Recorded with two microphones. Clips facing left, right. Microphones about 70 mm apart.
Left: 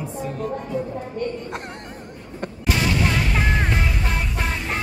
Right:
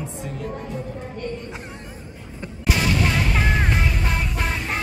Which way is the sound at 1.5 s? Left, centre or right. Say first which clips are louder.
Left 3 dB; left.